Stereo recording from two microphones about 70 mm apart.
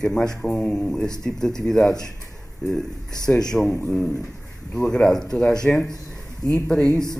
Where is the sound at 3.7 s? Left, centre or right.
Left.